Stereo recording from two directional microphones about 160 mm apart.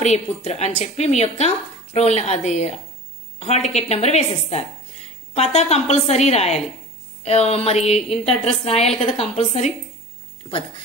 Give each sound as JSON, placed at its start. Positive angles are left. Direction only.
{"t": 0.0, "sound": "a woman's voice", "side_deg": 40}